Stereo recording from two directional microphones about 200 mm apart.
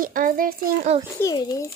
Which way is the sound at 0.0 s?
45° right (ahead or behind).